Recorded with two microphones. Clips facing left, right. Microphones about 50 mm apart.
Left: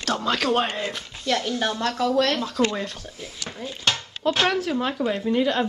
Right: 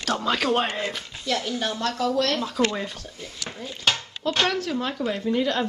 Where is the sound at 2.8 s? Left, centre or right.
Centre.